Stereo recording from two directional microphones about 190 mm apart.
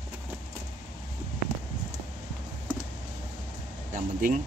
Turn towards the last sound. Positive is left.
turn(degrees=-45)  # may be behind; listen again after turning